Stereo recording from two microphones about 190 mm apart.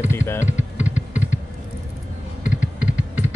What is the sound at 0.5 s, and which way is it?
Typing, 40° left (ahead or behind).